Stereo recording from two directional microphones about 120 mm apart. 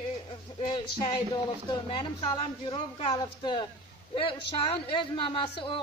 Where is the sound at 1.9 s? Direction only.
40° left (ahead or behind).